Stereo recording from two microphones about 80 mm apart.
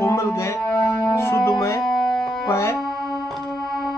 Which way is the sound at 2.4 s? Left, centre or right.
Left.